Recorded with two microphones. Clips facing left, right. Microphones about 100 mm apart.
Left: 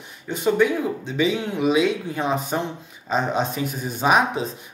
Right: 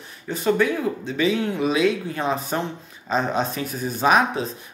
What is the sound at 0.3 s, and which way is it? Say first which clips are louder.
Speech: left 1 dB; 20° left (ahead or behind).